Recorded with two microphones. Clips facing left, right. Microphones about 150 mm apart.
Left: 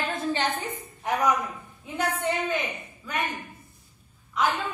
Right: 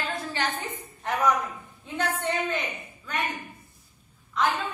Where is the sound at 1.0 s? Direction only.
10° left (ahead or behind).